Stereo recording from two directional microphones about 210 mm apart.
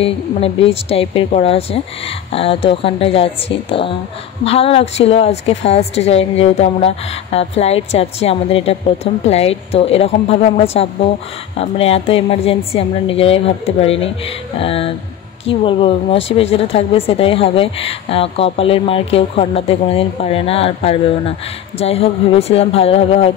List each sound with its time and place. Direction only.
0.0 s speech: 25° left (ahead or behind)